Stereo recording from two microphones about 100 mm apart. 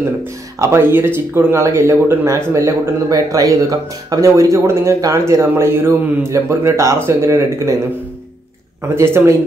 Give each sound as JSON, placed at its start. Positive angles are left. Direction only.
{"t": 0.2, "sound": "speech", "side_deg": -25}
{"t": 8.8, "sound": "speech", "side_deg": -25}